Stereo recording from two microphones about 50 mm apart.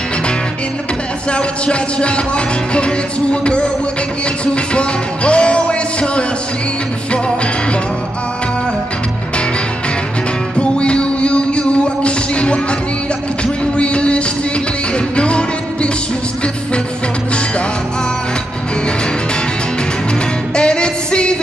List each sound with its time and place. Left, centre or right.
1.3 s music: left
4.7 s music: left
10.6 s music: left
13.7 s music: left
20.5 s music: centre